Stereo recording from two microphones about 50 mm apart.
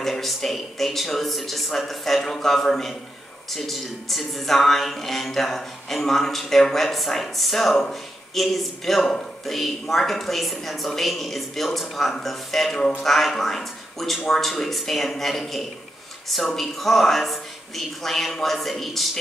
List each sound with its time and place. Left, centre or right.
0.0 s speech: centre